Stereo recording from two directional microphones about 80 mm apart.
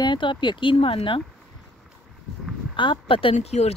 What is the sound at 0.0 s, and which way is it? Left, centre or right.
Speech, left.